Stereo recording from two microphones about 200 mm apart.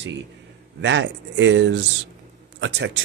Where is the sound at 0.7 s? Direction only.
65° right (ahead or behind).